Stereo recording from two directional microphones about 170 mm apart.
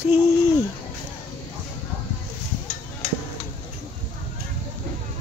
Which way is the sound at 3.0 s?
40° left (ahead or behind).